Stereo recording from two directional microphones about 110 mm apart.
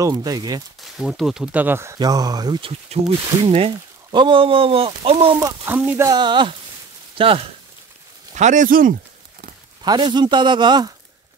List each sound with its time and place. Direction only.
0.0 s speech: 35° right (ahead or behind)
0.7 s speech: centre (ahead or behind); by 2.0 s 20° right (ahead or behind)
2.0 s speech: 35° right (ahead or behind)
2.6 s speech: 55° right (ahead or behind)
5.7 s speech: 20° right (ahead or behind)
6.0 s a man's voice: 40° right (ahead or behind)
7.2 s speech: 55° right (ahead or behind)
8.4 s speech: 90° right
9.8 s a man's voice: 40° right (ahead or behind)